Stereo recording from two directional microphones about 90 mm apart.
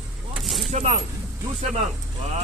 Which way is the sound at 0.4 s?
Centre (ahead or behind).